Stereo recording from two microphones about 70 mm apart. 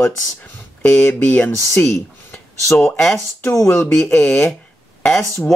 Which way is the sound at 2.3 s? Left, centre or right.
Left.